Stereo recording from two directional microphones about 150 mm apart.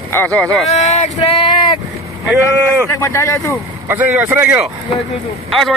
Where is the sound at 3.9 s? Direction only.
10° right (ahead or behind).